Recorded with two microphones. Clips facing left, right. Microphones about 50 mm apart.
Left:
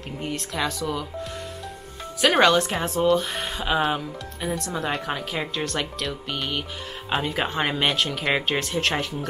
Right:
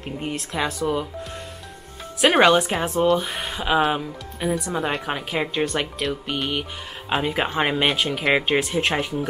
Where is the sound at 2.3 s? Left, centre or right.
Centre.